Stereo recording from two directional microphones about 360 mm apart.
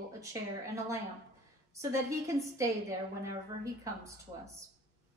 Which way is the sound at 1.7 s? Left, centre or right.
Centre.